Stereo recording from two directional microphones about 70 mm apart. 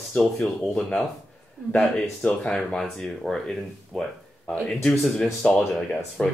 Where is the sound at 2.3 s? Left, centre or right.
Centre.